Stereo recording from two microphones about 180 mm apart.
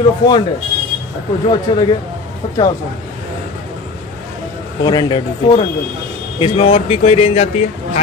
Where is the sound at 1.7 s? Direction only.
25° left (ahead or behind).